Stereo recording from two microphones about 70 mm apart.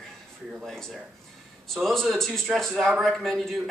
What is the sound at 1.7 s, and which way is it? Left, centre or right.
A man's voice, centre.